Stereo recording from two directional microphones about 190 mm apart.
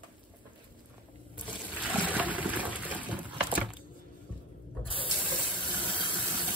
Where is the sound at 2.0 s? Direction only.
10° right (ahead or behind).